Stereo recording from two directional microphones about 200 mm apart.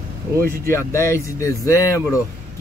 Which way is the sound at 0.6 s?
15° left (ahead or behind).